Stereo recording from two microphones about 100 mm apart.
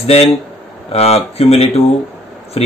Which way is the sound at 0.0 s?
90° left.